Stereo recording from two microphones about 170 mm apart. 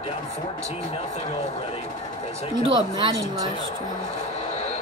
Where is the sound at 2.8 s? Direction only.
25° right (ahead or behind).